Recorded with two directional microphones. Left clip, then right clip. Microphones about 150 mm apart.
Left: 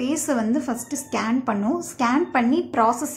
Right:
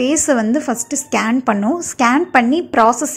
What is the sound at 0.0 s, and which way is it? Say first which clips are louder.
A woman's voice: right 9 dB; 40° right (ahead or behind).